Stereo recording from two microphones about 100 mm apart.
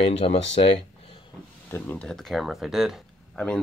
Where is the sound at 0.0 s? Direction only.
70° left (ahead or behind).